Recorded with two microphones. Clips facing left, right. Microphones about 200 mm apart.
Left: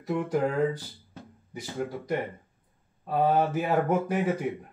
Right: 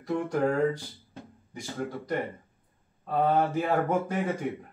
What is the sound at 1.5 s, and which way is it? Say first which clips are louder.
Speech: left 1 dB; 10° left (ahead or behind).